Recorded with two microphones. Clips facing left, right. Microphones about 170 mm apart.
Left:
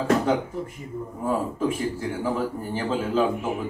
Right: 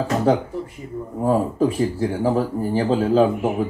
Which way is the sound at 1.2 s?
40° right (ahead or behind).